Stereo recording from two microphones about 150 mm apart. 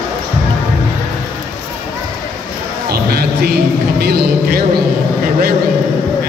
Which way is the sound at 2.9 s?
90° right.